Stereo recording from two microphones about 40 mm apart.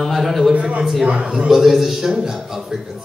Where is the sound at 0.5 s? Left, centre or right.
Right.